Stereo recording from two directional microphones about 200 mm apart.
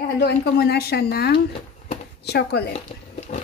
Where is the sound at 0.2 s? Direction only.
55° left (ahead or behind).